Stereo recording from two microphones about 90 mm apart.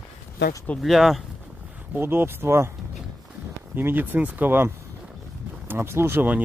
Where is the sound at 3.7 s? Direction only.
20° right (ahead or behind).